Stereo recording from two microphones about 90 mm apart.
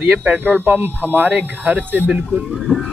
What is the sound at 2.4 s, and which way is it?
Speech, centre (ahead or behind).